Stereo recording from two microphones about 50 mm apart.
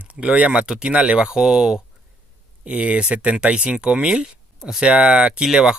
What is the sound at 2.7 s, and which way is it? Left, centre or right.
Speech, right.